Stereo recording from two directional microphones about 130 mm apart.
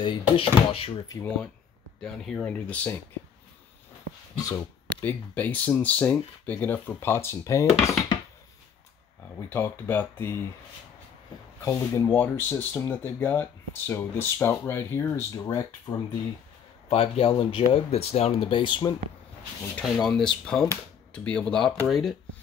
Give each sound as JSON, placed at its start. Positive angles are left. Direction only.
{"t": 0.0, "sound": "speech", "side_deg": 40}
{"t": 2.0, "sound": "speech", "side_deg": 5}
{"t": 4.4, "sound": "speech", "side_deg": 30}
{"t": 5.0, "sound": "speech", "side_deg": 10}
{"t": 9.5, "sound": "speech", "side_deg": 15}
{"t": 11.6, "sound": "speech", "side_deg": 25}
{"t": 16.9, "sound": "speech", "side_deg": 45}
{"t": 19.8, "sound": "speech", "side_deg": 5}